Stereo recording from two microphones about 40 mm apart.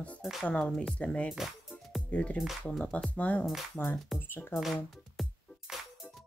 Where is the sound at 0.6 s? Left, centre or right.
Left.